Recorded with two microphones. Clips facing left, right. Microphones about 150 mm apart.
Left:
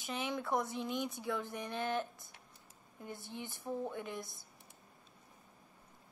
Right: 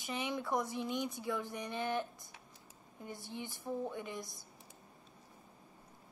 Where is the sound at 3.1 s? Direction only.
55° left (ahead or behind).